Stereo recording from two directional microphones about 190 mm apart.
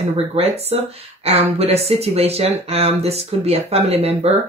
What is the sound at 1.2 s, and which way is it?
Speech, 35° right (ahead or behind).